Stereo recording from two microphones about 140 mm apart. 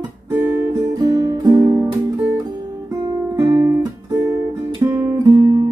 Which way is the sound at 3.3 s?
25° right (ahead or behind).